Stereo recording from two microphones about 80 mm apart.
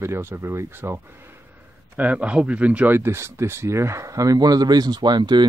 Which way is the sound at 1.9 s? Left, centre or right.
Centre.